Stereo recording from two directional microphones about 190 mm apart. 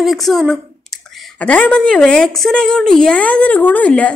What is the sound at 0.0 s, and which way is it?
A woman's voice, centre (ahead or behind).